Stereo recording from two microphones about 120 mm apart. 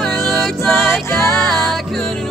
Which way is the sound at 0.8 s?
20° left (ahead or behind).